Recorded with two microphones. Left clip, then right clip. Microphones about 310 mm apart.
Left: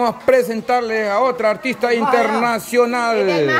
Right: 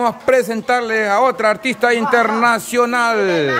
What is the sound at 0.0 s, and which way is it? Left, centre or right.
A man's voice, centre.